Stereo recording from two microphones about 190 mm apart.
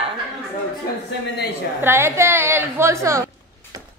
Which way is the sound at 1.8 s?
10° right (ahead or behind).